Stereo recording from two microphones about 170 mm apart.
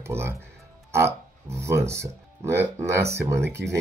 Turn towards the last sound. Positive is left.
turn(degrees=-15)  # may be behind; listen again after turning